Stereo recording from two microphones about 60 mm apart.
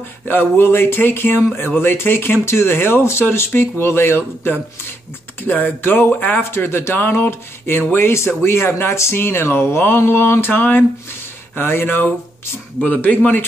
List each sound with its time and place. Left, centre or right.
0.2 s speech: left
5.4 s speech: left
6.5 s speech: left